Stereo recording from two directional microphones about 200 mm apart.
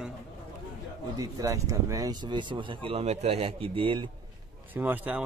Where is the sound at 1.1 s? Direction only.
15° right (ahead or behind).